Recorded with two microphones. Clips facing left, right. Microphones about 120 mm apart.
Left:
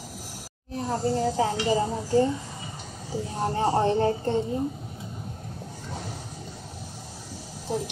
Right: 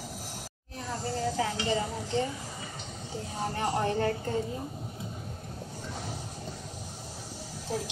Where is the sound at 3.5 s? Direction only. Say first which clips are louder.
Left 7 dB; 30° left (ahead or behind).